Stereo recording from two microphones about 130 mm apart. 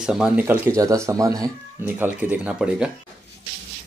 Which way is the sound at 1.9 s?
15° right (ahead or behind).